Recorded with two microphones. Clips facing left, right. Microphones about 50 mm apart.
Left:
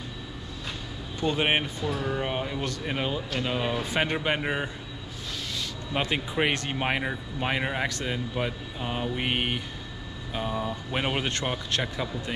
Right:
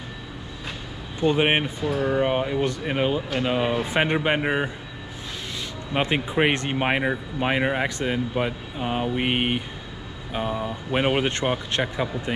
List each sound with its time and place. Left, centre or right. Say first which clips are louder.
1.2 s speech: right 5 dB; centre
5.9 s speech: right 5 dB; right